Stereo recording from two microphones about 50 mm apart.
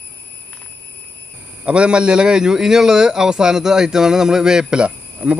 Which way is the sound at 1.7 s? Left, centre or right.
Right.